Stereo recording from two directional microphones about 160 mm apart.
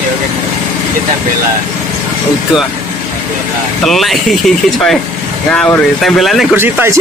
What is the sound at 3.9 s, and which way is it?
Speech, centre (ahead or behind).